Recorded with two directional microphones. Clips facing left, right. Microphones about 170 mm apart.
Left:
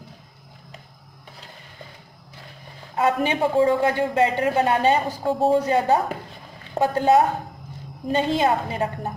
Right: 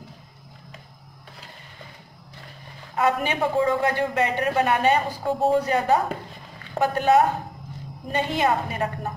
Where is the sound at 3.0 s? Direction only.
30° left (ahead or behind).